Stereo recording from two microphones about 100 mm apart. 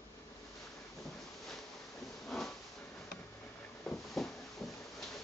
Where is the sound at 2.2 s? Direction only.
5° left (ahead or behind).